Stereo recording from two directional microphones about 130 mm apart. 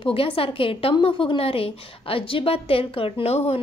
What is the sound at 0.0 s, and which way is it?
A woman's voice, 45° left (ahead or behind).